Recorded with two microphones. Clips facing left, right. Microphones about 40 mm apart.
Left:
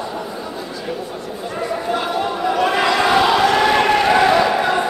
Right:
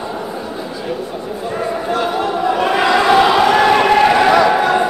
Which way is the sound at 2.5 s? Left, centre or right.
Centre.